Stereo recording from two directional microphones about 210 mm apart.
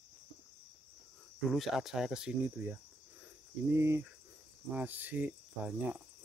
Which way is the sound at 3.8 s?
10° right (ahead or behind).